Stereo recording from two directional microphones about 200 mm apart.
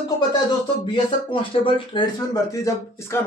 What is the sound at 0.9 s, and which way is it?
Speech, 25° left (ahead or behind).